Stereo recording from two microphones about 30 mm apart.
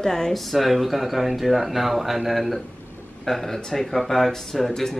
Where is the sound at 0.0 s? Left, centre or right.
Centre.